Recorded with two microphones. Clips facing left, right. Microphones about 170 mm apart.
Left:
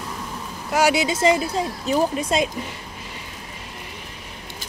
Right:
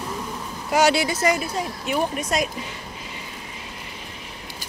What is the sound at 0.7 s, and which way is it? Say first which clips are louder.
Speech: right 1 dB; 5° left (ahead or behind).